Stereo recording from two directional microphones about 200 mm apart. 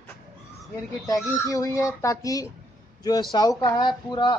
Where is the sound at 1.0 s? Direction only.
15° left (ahead or behind).